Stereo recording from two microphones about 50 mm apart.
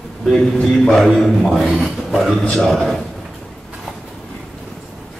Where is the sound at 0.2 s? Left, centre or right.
Centre.